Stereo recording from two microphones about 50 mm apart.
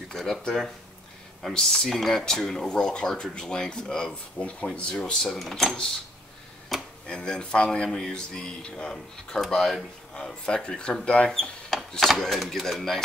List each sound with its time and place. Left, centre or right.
0.1 s speech: centre
1.5 s speech: centre
2.5 s speech: centre
6.7 s chop: centre
7.1 s speech: centre
10.4 s speech: left
11.3 s speech: centre